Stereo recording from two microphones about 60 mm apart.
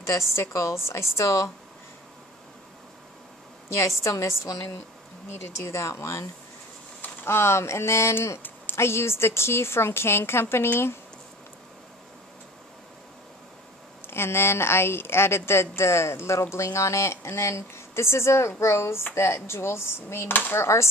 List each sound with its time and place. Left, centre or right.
0.0 s a woman's voice: left
4.0 s a woman's voice: left
14.0 s a woman's voice: left
20.6 s a woman's voice: left